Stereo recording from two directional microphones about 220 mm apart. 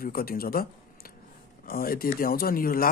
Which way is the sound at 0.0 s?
40° left (ahead or behind).